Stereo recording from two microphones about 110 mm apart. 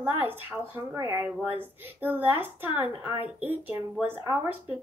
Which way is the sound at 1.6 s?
20° right (ahead or behind).